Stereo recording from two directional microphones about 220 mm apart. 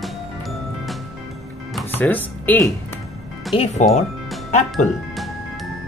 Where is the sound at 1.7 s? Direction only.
10° left (ahead or behind).